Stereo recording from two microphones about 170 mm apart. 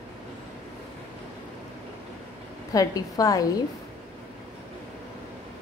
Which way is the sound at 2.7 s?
20° left (ahead or behind).